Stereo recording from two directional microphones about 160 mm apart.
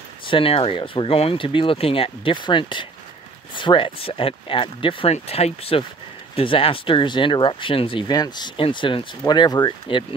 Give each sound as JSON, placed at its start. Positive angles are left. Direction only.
{"t": 0.3, "sound": "speech", "side_deg": 35}